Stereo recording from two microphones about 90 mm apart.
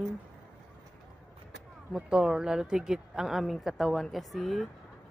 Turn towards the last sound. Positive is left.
turn(degrees=0)  # may be behind; listen again after turning